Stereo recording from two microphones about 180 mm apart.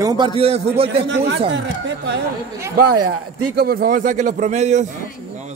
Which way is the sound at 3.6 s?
55° right (ahead or behind).